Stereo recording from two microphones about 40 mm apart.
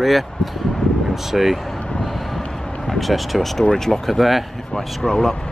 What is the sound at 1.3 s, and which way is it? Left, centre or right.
Speech, centre.